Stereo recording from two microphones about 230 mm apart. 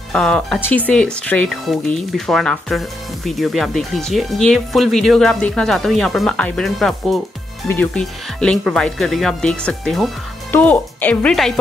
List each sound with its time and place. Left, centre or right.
0.1 s speech: centre